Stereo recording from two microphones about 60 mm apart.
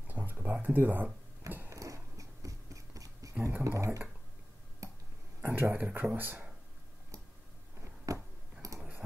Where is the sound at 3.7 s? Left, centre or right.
Right.